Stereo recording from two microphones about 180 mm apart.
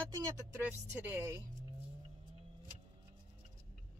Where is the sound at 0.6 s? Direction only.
10° right (ahead or behind).